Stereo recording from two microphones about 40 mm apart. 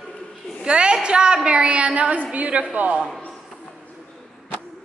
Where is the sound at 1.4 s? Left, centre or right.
Right.